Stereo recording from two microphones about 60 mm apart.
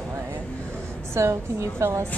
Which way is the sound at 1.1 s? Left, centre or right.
Right.